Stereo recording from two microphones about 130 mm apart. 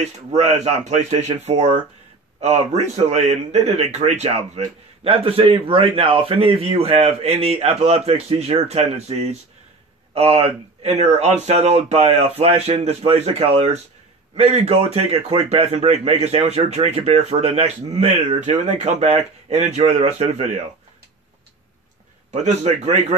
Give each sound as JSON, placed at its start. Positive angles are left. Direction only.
{"t": 0.0, "sound": "a man's voice", "side_deg": -60}
{"t": 5.0, "sound": "a man's voice", "side_deg": -45}
{"t": 22.3, "sound": "a man's voice", "side_deg": -60}